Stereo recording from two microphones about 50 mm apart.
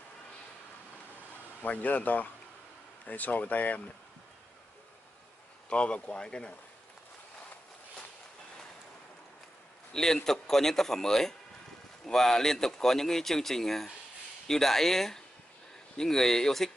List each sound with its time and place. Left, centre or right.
1.6 s speech: left
5.7 s speech: left
9.9 s speech: centre